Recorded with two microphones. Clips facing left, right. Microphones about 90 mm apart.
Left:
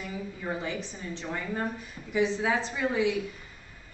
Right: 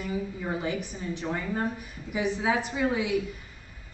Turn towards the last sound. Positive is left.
turn(degrees=-15)  # may be behind; listen again after turning